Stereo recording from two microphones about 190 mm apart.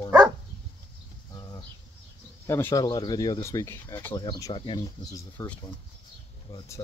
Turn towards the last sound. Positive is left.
turn(degrees=20)  # may be behind; listen again after turning